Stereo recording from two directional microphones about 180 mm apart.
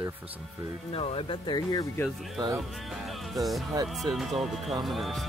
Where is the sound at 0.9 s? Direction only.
30° left (ahead or behind).